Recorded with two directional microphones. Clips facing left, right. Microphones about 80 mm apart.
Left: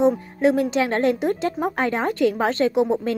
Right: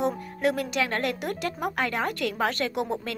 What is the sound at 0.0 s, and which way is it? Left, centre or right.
A woman's voice, left.